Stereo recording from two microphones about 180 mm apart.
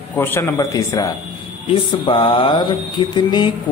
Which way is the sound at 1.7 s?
30° left (ahead or behind).